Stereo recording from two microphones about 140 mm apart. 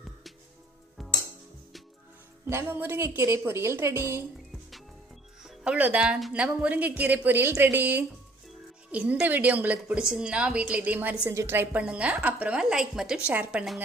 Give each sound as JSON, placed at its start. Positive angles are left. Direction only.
{"t": 2.4, "sound": "a woman's voice", "side_deg": -15}
{"t": 5.4, "sound": "a woman's voice", "side_deg": -5}